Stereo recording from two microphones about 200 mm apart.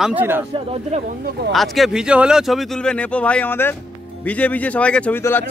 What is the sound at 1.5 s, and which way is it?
Speech, centre (ahead or behind).